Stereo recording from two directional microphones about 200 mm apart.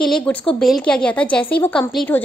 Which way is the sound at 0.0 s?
5° left (ahead or behind).